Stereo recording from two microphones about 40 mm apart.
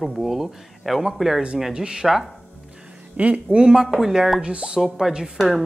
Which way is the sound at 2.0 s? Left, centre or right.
Centre.